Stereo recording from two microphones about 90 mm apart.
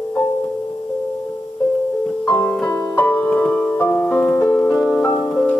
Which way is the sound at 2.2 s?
30° left (ahead or behind).